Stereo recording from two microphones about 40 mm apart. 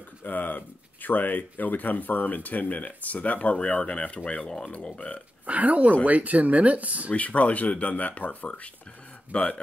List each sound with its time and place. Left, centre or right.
0.2 s speech: left
5.5 s speech: right
7.1 s speech: left